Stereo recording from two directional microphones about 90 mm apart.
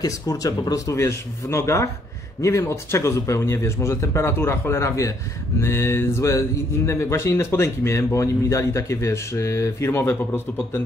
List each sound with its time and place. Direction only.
0.0 s a man's voice: 40° left (ahead or behind)
5.6 s mantra: 30° left (ahead or behind)
6.9 s a man's voice: 30° left (ahead or behind)